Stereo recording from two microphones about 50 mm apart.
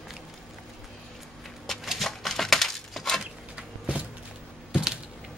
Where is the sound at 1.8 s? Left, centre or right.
Centre.